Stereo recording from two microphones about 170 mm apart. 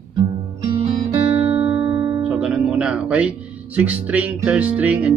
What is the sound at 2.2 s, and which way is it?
Music, 5° right (ahead or behind).